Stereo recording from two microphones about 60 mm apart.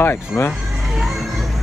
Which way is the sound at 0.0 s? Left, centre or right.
Left.